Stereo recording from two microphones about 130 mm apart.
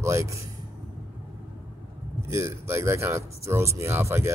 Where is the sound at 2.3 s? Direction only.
20° right (ahead or behind).